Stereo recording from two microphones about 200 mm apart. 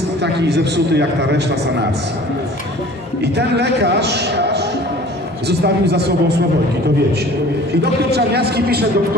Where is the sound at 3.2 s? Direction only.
55° right (ahead or behind).